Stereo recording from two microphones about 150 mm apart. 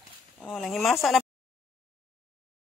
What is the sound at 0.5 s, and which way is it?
Speech, centre (ahead or behind).